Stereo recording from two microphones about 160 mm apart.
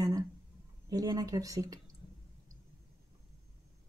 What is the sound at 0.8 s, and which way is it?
Speech, 25° right (ahead or behind).